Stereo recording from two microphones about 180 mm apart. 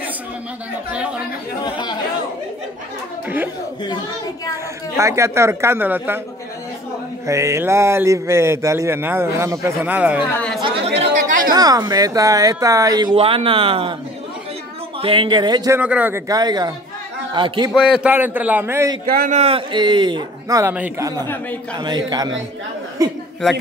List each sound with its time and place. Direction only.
1.6 s speech: 25° left (ahead or behind)
4.9 s speech: 15° right (ahead or behind)
7.2 s speech: 15° right (ahead or behind)
10.3 s speech: 5° left (ahead or behind)
11.2 s a sound: 50° right (ahead or behind)
11.5 s speech: 20° right (ahead or behind)
15.0 s speech: 30° right (ahead or behind)
15.8 s speech: 10° right (ahead or behind)
16.3 s a man's voice: 20° right (ahead or behind)
17.7 s speech: 5° right (ahead or behind)
19.0 s speech: 50° right (ahead or behind); by 20.7 s 20° right (ahead or behind)
20.7 s speech: 10° right (ahead or behind)
21.7 s speech: 25° right (ahead or behind)